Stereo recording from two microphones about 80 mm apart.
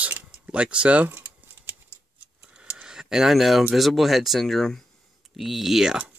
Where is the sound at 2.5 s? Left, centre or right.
Centre.